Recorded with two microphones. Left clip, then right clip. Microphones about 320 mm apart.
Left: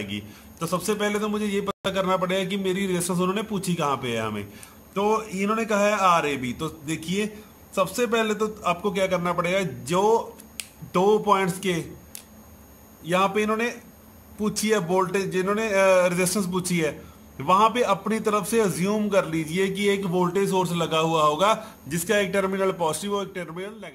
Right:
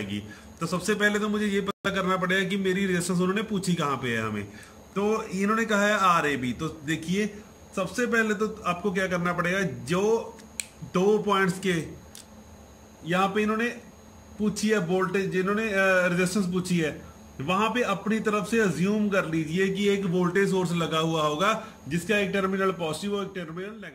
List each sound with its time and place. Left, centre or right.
0.1 s a man's voice: centre
13.0 s a man's voice: centre